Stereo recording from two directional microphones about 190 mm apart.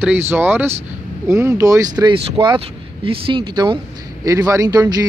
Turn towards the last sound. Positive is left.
turn(degrees=-20)  # may be behind; listen again after turning